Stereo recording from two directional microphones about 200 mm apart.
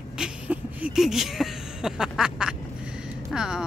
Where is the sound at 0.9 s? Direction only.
Centre (ahead or behind).